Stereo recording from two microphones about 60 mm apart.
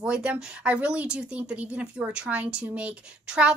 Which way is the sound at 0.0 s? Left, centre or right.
Centre.